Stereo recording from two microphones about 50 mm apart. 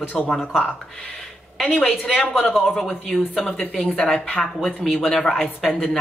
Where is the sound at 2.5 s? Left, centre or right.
Centre.